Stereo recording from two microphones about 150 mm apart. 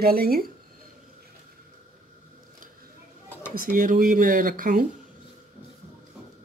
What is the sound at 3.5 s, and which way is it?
Speech, 70° right (ahead or behind).